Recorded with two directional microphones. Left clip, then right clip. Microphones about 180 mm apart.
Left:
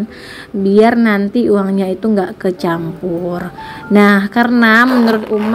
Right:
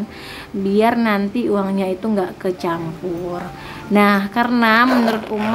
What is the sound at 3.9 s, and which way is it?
Speech, 25° left (ahead or behind).